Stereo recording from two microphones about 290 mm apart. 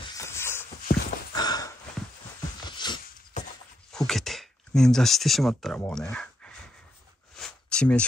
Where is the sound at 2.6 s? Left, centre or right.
Centre.